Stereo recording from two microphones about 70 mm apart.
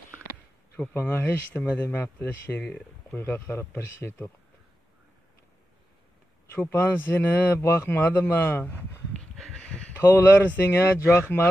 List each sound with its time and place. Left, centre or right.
0.9 s speech: left
6.5 s speech: left
10.2 s speech: left